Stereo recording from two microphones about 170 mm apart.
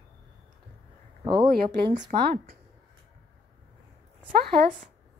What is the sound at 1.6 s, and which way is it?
Speech, 55° right (ahead or behind).